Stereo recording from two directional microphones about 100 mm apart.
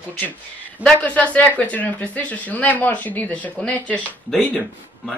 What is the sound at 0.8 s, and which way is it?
Speech, 15° left (ahead or behind).